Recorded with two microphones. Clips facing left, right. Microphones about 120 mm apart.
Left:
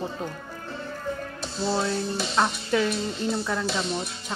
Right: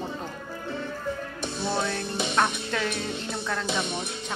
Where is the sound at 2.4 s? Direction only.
5° left (ahead or behind).